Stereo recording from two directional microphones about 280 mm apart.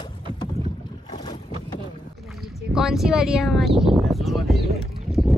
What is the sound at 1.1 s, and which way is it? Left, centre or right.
Boat, centre.